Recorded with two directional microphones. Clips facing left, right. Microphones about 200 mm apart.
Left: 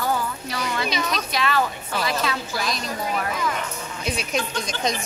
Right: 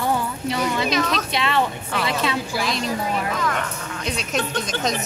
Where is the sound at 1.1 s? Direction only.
25° right (ahead or behind).